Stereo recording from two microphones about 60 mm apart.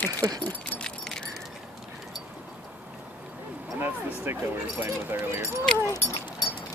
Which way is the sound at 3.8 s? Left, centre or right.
Right.